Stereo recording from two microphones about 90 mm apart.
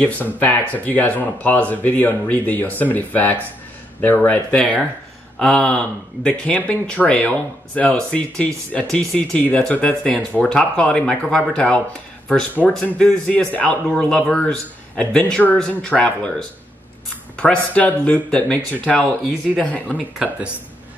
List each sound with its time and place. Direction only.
0.0 s speech: 20° left (ahead or behind)
20.2 s speech: 5° right (ahead or behind)